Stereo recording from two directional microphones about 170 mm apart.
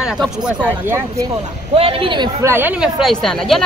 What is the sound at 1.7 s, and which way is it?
Speech, 35° right (ahead or behind).